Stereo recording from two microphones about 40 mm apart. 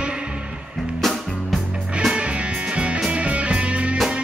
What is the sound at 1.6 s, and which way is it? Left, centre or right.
Music, right.